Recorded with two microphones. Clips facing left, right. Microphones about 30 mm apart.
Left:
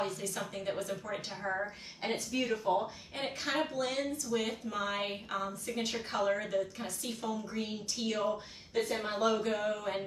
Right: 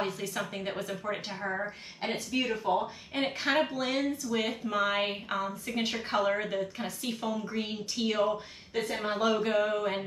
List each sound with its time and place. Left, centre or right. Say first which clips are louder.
0.0 s speech: right 3 dB; right